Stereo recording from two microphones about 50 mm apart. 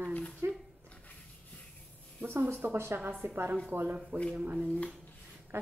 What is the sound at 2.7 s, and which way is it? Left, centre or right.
Speech, right.